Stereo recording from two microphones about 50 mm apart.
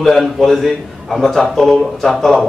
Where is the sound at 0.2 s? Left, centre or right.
Centre.